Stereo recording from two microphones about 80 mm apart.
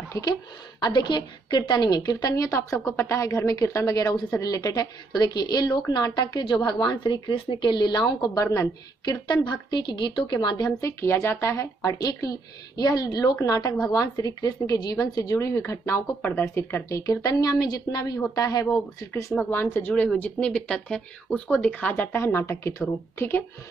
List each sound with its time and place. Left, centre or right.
0.2 s a woman's voice: left
5.1 s a woman's voice: left
8.4 s speech: left
9.0 s a woman's voice: left
10.8 s speech: left
13.4 s speech: left
15.3 s speech: left
18.9 s speech: left
19.5 s a woman's voice: left
19.9 s speech: centre